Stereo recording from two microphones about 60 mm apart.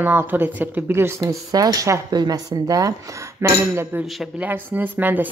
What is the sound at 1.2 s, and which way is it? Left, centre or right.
Speech, right.